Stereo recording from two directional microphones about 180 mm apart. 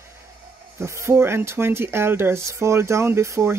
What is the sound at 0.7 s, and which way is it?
Speech, 15° right (ahead or behind).